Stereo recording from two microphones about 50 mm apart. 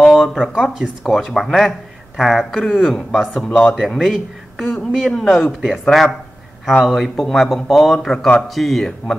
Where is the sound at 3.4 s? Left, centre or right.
Centre.